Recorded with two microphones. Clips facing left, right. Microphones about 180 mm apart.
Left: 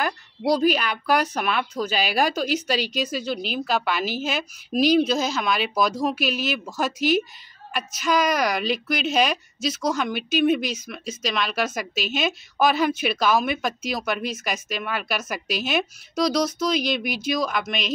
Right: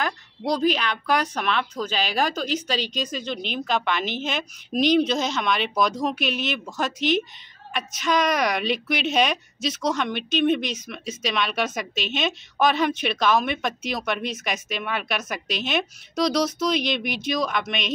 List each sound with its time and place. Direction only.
0.0 s a woman's voice: 10° left (ahead or behind)